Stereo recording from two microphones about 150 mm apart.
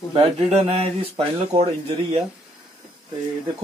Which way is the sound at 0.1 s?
40° right (ahead or behind).